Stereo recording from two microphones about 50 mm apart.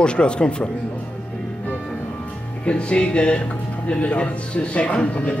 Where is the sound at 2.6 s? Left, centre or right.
Left.